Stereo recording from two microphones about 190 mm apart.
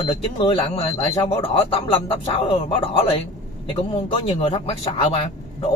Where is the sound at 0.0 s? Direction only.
25° left (ahead or behind).